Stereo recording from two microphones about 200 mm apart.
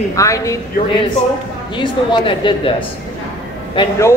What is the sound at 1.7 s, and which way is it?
A man's voice, 25° left (ahead or behind).